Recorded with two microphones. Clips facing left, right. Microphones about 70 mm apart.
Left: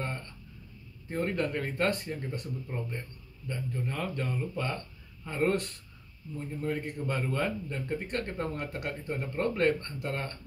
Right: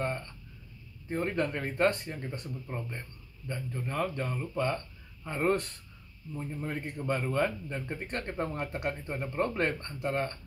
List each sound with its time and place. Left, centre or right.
1.0 s a man's voice: centre